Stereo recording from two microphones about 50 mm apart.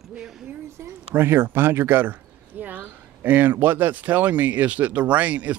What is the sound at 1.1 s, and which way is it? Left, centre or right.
Speech, right.